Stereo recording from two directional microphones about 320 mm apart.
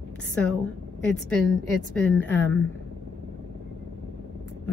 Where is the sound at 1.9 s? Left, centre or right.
Centre.